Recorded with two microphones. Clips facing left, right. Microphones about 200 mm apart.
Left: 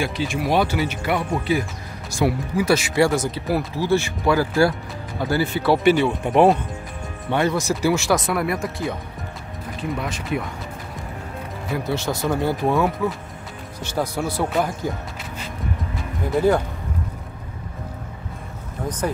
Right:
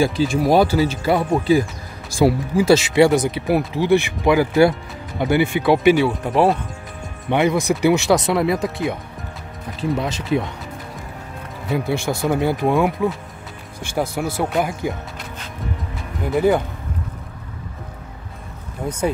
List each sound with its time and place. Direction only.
0.0 s speech: 35° right (ahead or behind); by 6.6 s centre (ahead or behind)
7.2 s speech: 15° right (ahead or behind)
11.7 s speech: 10° right (ahead or behind)
14.2 s speech: 10° right (ahead or behind)
16.3 s speech: 5° right (ahead or behind)
18.9 s speech: 10° right (ahead or behind)